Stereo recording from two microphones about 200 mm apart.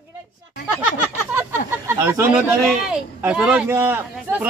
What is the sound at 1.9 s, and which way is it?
Speech, 10° right (ahead or behind).